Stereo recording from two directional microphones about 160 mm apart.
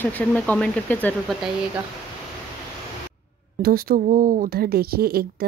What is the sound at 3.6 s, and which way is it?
A woman's voice, 65° right (ahead or behind).